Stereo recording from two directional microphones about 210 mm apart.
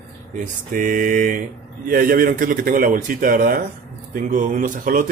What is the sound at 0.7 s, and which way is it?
Speech, 40° right (ahead or behind).